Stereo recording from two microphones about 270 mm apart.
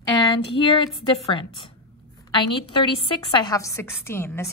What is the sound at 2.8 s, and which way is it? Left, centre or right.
A woman's voice, centre.